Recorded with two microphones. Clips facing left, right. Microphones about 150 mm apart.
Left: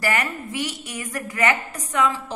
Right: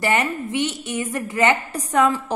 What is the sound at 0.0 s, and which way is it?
A woman's voice, 25° right (ahead or behind).